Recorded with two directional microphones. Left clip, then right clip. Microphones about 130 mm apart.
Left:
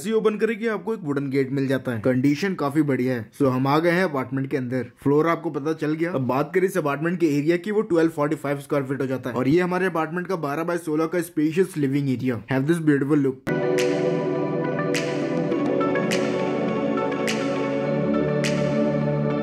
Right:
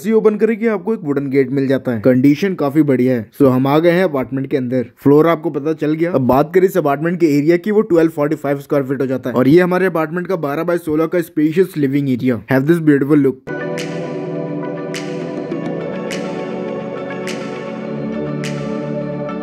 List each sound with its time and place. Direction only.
0.3 s speech: 20° right (ahead or behind)
2.0 s speech: 35° right (ahead or behind)
5.7 s speech: 30° right (ahead or behind)
6.1 s speech: 45° right (ahead or behind); by 8.8 s 25° right (ahead or behind)
9.3 s speech: 50° right (ahead or behind)
12.4 s speech: 50° right (ahead or behind)
12.7 s speech: 35° right (ahead or behind)